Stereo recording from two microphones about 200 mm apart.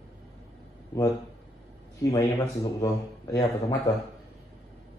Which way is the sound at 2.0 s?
15° left (ahead or behind).